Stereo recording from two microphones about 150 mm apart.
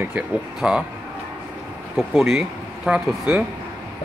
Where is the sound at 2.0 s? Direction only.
Centre (ahead or behind).